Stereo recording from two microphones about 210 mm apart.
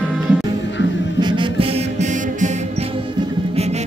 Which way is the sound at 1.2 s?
20° right (ahead or behind).